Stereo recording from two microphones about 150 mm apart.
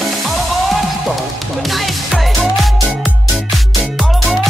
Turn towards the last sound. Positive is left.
turn(degrees=-5)  # may be behind; listen again after turning